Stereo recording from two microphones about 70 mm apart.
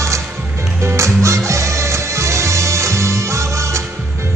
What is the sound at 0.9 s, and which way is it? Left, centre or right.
Music, right.